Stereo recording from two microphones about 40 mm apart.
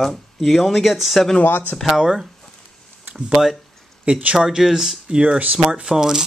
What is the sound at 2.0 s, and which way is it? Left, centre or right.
Speech, centre.